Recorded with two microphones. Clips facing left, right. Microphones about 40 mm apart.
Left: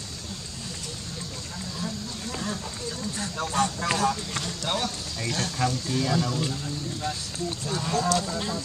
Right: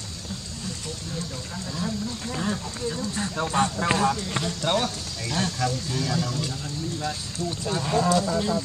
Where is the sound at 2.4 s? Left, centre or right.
Right.